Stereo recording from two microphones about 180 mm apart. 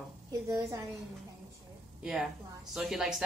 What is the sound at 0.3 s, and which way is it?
Speech, 20° right (ahead or behind).